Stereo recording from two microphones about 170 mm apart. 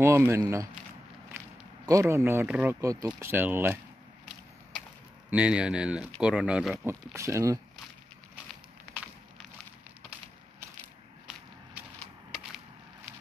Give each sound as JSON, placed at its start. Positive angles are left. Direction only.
{"t": 0.0, "sound": "speech", "side_deg": -15}
{"t": 1.9, "sound": "speech", "side_deg": -15}
{"t": 5.3, "sound": "speech", "side_deg": -5}